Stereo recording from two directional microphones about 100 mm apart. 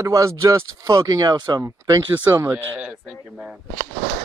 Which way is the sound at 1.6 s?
30° right (ahead or behind).